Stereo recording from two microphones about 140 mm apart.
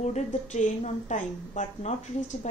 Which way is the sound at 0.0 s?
55° left (ahead or behind).